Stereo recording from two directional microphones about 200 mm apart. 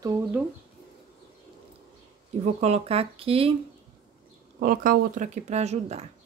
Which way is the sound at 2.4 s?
35° right (ahead or behind).